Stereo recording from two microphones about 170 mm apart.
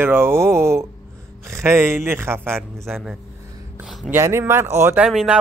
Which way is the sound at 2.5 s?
Centre (ahead or behind).